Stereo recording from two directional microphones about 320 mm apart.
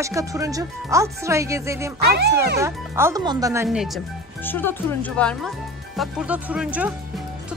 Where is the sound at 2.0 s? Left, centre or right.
Right.